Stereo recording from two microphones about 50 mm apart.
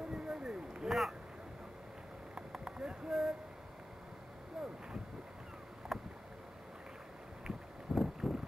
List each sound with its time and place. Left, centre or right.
0.1 s a sound: centre
0.8 s rowboat: centre
2.3 s a sound: centre
4.6 s boat: centre
5.9 s boat: centre
7.9 s vehicle: centre